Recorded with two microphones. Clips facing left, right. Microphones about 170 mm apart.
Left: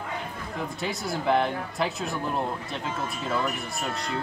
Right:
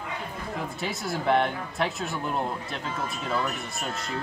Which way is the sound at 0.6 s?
Centre (ahead or behind).